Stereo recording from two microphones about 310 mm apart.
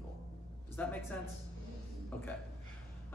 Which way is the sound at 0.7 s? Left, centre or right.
Centre.